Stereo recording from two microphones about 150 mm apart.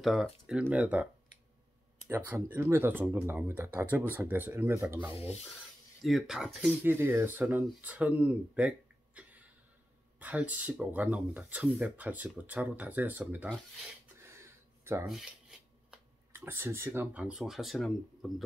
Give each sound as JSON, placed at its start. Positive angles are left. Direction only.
{"t": 0.0, "sound": "speech", "side_deg": 0}
{"t": 2.0, "sound": "speech", "side_deg": -15}
{"t": 6.0, "sound": "speech", "side_deg": 0}
{"t": 14.0, "sound": "a sound", "side_deg": -15}
{"t": 15.0, "sound": "speech", "side_deg": -5}